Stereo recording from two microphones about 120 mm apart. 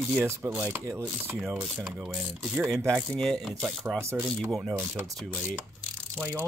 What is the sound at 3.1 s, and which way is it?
Speech, 5° left (ahead or behind).